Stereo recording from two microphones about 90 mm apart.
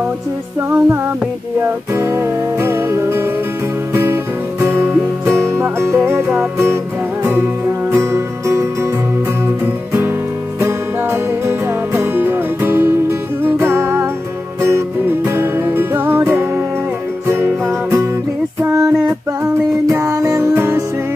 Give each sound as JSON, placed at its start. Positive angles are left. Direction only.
{"t": 0.6, "sound": "music", "side_deg": -30}
{"t": 7.9, "sound": "music", "side_deg": -30}
{"t": 10.6, "sound": "music", "side_deg": -30}